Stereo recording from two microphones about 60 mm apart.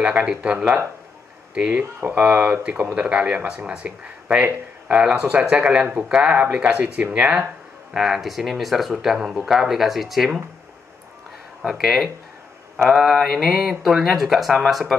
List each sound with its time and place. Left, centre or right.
0.0 s speech: centre
7.9 s speech: centre
11.6 s speech: centre